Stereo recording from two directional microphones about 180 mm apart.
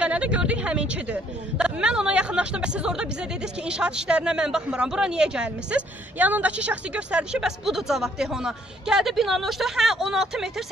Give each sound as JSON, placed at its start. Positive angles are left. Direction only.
{"t": 0.0, "sound": "a woman's voice", "side_deg": -5}